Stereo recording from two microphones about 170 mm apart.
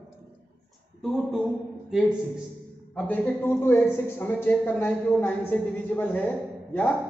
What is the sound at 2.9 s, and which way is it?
A man's voice, 10° left (ahead or behind).